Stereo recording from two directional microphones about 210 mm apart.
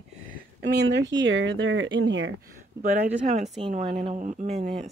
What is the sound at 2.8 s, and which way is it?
Speech, 35° right (ahead or behind).